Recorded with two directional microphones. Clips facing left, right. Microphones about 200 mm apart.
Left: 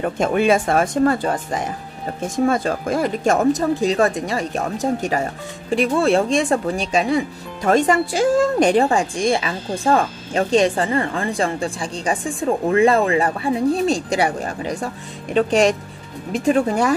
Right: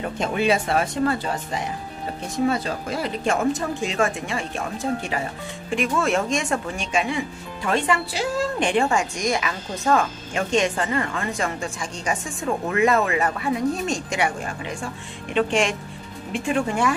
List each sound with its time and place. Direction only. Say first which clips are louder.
0.0 s speech: left 5 dB; 50° left (ahead or behind)